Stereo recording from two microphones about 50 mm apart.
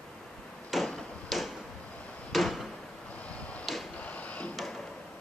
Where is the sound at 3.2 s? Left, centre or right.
Left.